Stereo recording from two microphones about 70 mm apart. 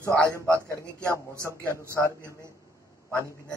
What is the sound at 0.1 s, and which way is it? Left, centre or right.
A man's voice, right.